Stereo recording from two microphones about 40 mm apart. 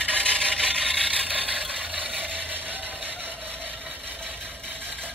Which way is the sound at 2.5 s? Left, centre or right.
Right.